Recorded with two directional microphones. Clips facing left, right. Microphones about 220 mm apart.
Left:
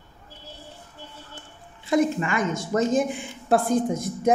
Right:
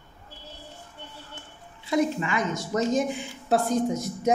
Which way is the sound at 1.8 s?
50° left (ahead or behind).